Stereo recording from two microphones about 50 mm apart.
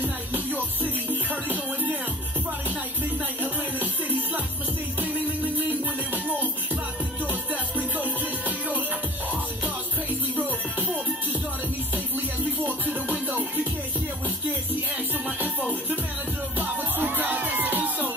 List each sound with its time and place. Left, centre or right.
0.0 s music: right
5.7 s music: right
11.9 s music: right
15.2 s music: right